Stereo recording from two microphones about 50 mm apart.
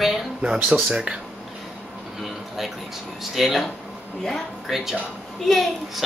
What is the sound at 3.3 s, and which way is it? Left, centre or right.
Speech, centre.